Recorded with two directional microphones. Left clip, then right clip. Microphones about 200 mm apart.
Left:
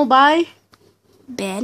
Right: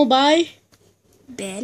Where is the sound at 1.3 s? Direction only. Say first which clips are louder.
Left 5 dB; 45° left (ahead or behind).